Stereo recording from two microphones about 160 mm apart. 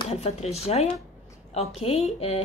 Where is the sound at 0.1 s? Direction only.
40° left (ahead or behind).